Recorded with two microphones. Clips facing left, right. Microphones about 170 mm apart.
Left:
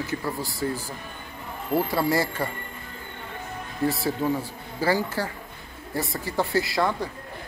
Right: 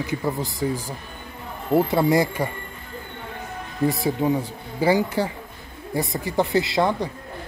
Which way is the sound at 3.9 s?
15° right (ahead or behind).